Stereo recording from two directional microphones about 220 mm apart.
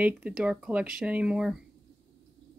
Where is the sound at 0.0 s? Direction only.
5° right (ahead or behind).